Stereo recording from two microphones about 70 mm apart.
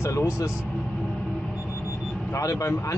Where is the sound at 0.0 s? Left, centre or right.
Left.